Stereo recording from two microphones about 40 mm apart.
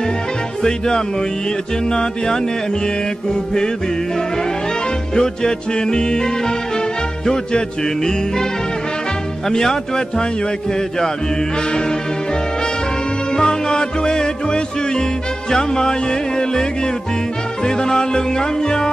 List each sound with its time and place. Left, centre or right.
0.6 s music: centre
5.1 s music: centre
9.5 s music: centre
13.3 s music: centre